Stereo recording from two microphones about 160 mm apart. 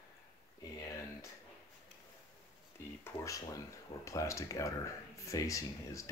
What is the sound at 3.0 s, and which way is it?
Speech, 20° left (ahead or behind).